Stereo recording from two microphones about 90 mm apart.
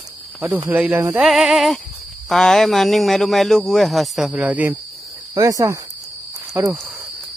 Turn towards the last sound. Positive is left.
turn(degrees=-20)  # may be behind; listen again after turning